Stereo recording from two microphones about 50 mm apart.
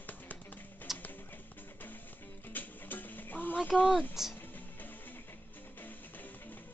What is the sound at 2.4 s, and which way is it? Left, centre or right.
Music, left.